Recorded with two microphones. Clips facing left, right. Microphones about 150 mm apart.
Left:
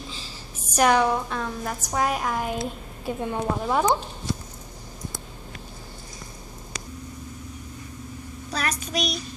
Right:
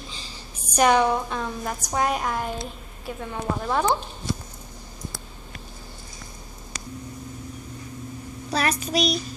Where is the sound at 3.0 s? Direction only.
20° left (ahead or behind).